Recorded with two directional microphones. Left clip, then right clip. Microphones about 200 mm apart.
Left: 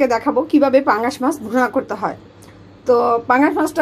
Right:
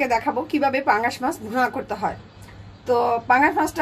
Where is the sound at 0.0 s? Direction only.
15° left (ahead or behind).